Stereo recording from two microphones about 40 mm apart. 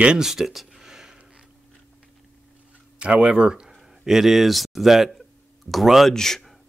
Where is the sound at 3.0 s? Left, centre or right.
Right.